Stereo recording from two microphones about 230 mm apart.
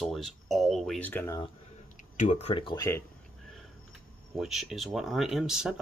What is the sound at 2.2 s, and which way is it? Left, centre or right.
Speech, left.